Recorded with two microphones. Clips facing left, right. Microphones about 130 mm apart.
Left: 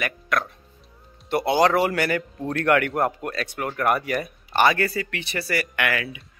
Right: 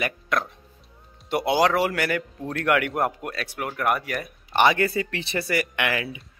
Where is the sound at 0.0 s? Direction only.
25° right (ahead or behind).